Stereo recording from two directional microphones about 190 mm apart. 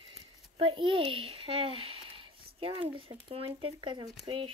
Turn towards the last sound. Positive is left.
turn(degrees=-25)  # may be behind; listen again after turning